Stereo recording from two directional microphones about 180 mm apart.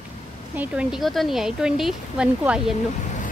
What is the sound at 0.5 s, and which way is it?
A woman's voice, 5° right (ahead or behind).